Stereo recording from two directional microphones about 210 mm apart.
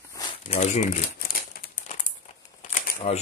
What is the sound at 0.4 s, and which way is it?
Crumpling, 35° left (ahead or behind).